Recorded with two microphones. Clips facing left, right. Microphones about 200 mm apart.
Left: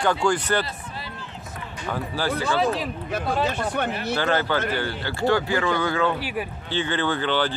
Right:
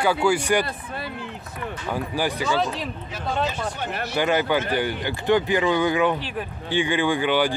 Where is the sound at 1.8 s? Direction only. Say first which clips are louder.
Even; 15° right (ahead or behind).